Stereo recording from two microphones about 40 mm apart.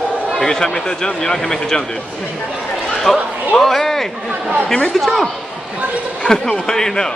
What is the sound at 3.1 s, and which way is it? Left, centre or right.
Speech, centre.